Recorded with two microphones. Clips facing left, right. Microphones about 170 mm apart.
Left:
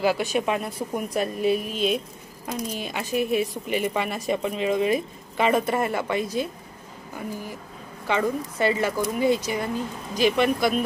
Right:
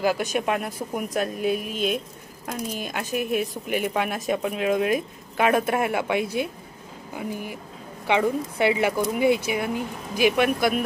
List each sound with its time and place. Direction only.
0.1 s speech: centre (ahead or behind)
6.1 s speech: 60° right (ahead or behind)
7.2 s speech: 15° right (ahead or behind)